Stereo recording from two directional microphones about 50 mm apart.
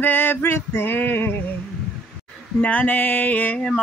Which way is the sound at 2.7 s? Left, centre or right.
Left.